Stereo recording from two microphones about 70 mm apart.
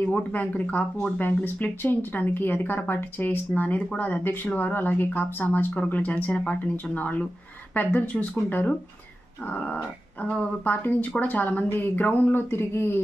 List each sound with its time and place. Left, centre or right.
0.0 s speech: left